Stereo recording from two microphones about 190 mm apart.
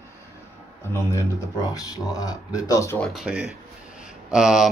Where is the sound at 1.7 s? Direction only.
20° left (ahead or behind).